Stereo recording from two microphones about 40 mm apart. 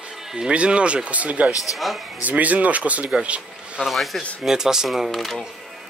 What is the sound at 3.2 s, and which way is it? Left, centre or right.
Bee, right.